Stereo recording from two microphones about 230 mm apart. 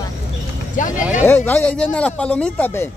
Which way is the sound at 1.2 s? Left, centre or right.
Centre.